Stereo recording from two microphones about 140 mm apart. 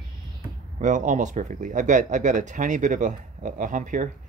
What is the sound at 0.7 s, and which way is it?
Speech, 65° right (ahead or behind).